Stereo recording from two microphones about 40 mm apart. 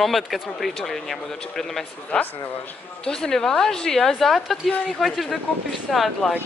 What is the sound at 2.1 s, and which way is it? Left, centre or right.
Speech, left.